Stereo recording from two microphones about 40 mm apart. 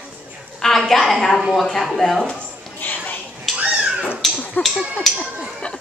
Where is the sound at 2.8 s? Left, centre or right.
Left.